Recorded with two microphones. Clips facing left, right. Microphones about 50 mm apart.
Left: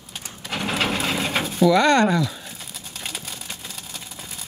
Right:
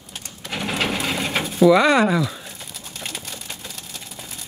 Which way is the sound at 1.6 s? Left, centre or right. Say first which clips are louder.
Right 2 dB; centre.